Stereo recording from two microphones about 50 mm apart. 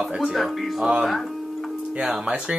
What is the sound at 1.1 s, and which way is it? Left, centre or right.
Tick-tock, centre.